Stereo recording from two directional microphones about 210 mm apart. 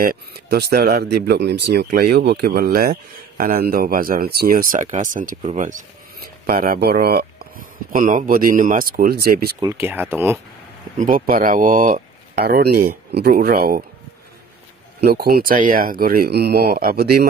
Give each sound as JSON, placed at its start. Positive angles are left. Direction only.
{"t": 0.0, "sound": "speech", "side_deg": -45}
{"t": 9.6, "sound": "speech", "side_deg": -15}
{"t": 11.0, "sound": "speech", "side_deg": -40}
{"t": 15.0, "sound": "speech", "side_deg": -45}